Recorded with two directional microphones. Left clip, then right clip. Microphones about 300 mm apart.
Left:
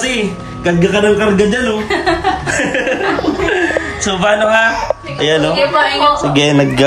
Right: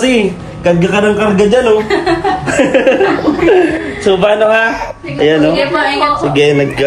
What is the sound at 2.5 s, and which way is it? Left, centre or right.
Speech, centre.